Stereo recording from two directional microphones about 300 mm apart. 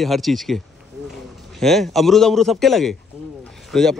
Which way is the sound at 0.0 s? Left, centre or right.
Centre.